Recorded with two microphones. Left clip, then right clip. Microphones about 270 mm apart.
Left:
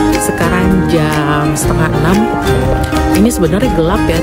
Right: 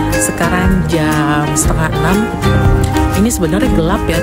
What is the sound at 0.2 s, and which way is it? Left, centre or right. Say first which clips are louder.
Speech: left 1 dB; centre.